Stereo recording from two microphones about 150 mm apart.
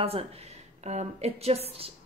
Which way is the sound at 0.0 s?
40° right (ahead or behind).